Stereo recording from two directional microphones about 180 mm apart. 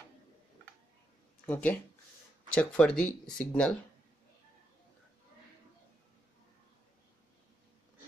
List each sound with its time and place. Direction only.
1.4 s speech: 10° left (ahead or behind)